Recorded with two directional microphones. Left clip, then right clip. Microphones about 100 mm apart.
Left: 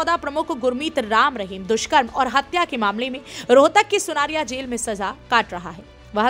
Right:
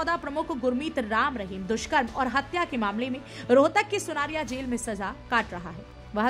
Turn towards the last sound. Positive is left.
turn(degrees=25)  # may be behind; listen again after turning